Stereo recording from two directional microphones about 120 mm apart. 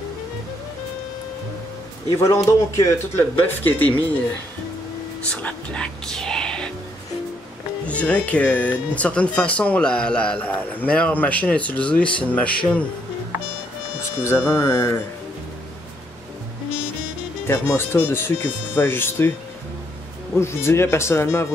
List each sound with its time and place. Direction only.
2.0 s speech: 25° left (ahead or behind)
5.3 s speech: 10° left (ahead or behind)
7.8 s speech: 10° left (ahead or behind)
14.2 s speech: 20° left (ahead or behind)
17.5 s speech: 20° left (ahead or behind)
20.3 s speech: 20° left (ahead or behind)